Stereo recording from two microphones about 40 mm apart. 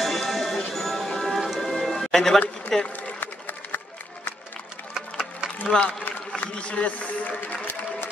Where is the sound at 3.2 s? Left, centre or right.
Left.